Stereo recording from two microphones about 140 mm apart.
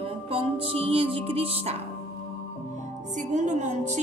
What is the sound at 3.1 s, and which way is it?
Speech, 60° right (ahead or behind).